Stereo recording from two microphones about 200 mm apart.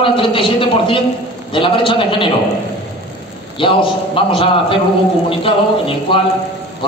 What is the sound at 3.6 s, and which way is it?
A man's voice, 25° left (ahead or behind).